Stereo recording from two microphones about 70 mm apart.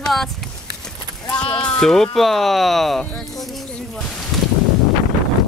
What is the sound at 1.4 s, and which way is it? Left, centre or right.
Speech, centre.